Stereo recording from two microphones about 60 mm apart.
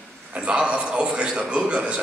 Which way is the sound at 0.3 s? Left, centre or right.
Centre.